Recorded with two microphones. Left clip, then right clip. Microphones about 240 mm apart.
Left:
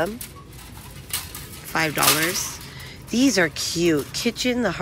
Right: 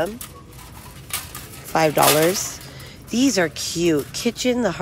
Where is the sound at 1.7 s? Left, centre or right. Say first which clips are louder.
Right 5 dB; centre.